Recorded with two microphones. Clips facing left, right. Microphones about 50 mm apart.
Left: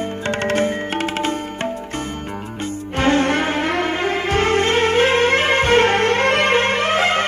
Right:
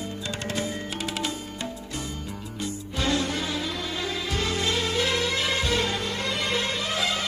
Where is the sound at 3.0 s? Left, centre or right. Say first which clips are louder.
Left 10 dB; left.